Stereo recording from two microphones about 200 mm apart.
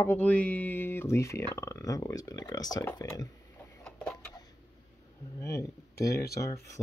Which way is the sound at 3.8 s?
5° left (ahead or behind).